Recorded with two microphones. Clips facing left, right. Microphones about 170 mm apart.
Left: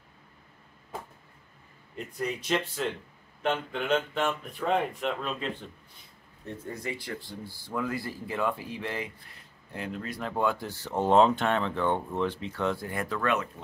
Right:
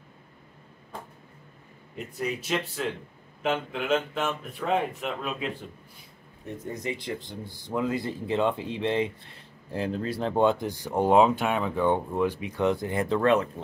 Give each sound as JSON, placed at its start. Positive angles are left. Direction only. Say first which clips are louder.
{"t": 2.0, "sound": "speech", "louder": "right 1 dB", "side_deg": -5}
{"t": 6.4, "sound": "speech", "louder": "right 3 dB", "side_deg": -20}